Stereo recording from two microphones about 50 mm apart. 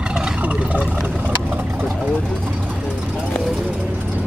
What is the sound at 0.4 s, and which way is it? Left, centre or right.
Vehicle, right.